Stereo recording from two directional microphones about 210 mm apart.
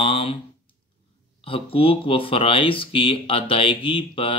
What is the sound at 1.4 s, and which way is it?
Speech, 25° left (ahead or behind).